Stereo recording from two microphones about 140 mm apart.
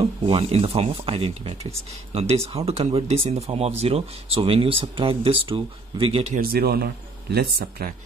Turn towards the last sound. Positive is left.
turn(degrees=-90)